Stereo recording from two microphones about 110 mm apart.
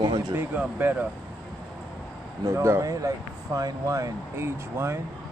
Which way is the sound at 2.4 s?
25° right (ahead or behind).